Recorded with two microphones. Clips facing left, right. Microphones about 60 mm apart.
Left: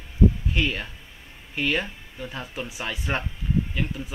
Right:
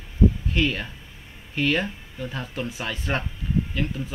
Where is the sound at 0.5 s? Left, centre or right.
Centre.